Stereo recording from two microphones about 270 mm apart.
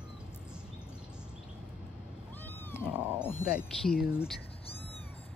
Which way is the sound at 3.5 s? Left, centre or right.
Centre.